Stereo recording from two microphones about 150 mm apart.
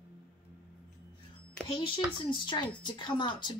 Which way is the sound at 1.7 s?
35° left (ahead or behind).